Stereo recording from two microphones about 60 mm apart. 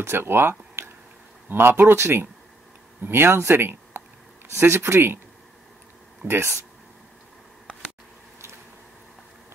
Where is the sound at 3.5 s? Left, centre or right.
Right.